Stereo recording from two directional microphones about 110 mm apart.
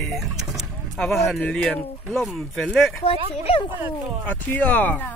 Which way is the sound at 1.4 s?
10° left (ahead or behind).